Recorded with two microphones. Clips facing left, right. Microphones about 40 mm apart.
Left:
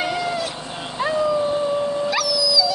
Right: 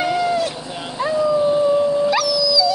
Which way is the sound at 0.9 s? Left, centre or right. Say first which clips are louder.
Right 2 dB; left.